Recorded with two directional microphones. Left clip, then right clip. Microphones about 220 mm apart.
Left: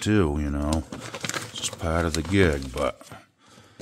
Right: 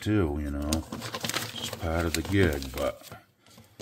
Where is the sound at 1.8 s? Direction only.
60° left (ahead or behind).